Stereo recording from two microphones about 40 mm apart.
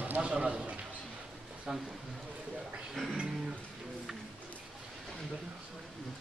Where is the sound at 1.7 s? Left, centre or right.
Centre.